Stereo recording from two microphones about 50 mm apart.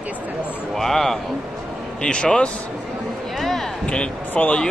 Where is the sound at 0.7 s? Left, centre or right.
Centre.